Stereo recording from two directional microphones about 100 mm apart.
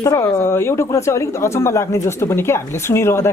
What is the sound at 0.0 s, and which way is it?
Speech, 35° left (ahead or behind).